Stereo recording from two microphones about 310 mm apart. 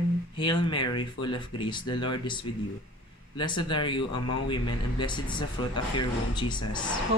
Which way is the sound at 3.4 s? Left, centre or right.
Centre.